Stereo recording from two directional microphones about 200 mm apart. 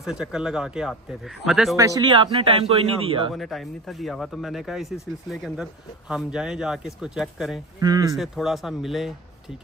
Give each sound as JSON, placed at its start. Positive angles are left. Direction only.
{"t": 0.0, "sound": "speech", "side_deg": -5}
{"t": 1.8, "sound": "speech", "side_deg": -20}
{"t": 3.3, "sound": "speech", "side_deg": 0}
{"t": 7.8, "sound": "speech", "side_deg": -20}
{"t": 8.2, "sound": "speech", "side_deg": 0}